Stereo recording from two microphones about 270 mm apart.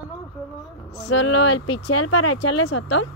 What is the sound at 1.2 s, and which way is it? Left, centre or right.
Speech, left.